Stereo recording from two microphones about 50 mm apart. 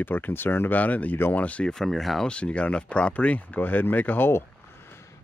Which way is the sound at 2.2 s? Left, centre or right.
Left.